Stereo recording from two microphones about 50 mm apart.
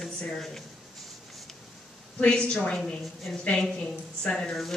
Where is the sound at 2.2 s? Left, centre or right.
Left.